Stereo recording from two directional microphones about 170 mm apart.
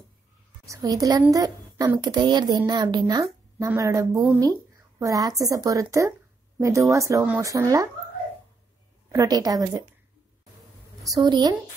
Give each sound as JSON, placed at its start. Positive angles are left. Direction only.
{"t": 0.7, "sound": "a woman's voice", "side_deg": -20}
{"t": 9.1, "sound": "speech", "side_deg": -20}
{"t": 11.1, "sound": "speech", "side_deg": -25}